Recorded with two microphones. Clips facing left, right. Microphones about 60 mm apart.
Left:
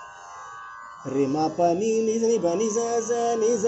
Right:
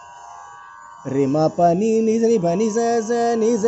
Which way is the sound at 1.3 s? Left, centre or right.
Right.